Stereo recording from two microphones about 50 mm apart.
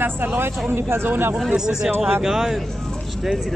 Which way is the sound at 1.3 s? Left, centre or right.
Centre.